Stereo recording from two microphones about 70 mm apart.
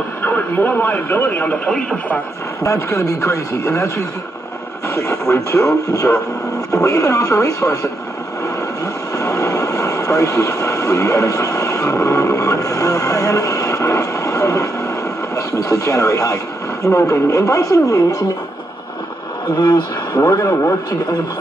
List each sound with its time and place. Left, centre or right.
0.2 s speech: left
1.7 s speech: centre
2.6 s speech: left
8.8 s vehicle: left
15.3 s speech: left
19.5 s speech: left
20.3 s speech: left